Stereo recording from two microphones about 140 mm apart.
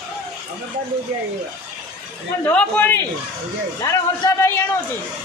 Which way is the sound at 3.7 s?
25° left (ahead or behind).